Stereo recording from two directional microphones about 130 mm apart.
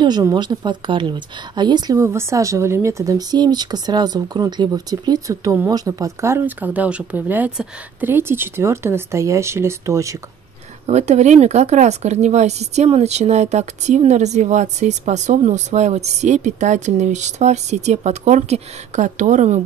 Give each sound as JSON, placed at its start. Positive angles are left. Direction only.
{"t": 0.2, "sound": "speech", "side_deg": -30}
{"t": 2.0, "sound": "speech", "side_deg": -20}
{"t": 10.9, "sound": "speech", "side_deg": -60}